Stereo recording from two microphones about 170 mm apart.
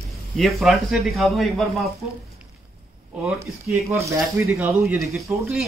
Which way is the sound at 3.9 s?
15° right (ahead or behind).